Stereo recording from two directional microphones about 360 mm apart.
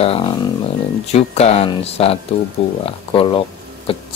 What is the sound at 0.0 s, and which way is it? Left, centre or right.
Speech, centre.